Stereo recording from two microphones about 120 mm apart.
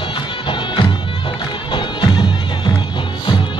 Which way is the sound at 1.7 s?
40° left (ahead or behind).